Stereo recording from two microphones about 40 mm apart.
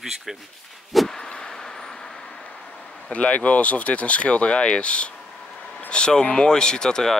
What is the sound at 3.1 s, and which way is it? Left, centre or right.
Speech, left.